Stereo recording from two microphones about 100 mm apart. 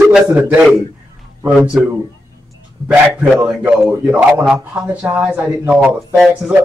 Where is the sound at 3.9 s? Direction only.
15° right (ahead or behind).